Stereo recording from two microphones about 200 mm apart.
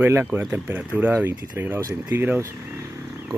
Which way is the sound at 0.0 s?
10° right (ahead or behind).